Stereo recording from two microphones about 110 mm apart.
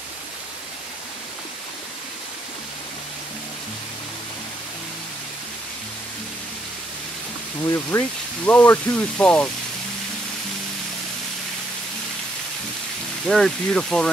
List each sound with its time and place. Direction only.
7.6 s speech: 30° left (ahead or behind)
8.5 s speech: 15° left (ahead or behind)
13.3 s speech: 5° left (ahead or behind)